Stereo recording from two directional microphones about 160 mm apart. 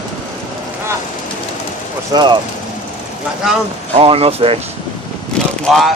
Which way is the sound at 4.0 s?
35° right (ahead or behind).